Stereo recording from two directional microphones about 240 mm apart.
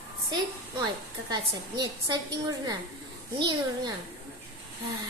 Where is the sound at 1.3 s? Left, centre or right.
Centre.